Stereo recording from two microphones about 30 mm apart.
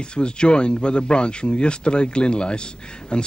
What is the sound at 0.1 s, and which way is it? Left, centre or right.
Speech, left.